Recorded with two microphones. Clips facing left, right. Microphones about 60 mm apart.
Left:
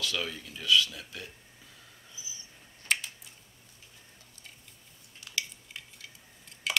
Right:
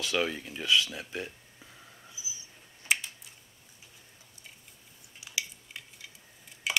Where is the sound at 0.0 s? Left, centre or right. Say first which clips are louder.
Right 4 dB; right.